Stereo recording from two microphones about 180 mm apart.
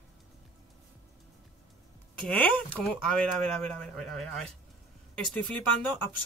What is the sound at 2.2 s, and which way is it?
Speech, 5° left (ahead or behind).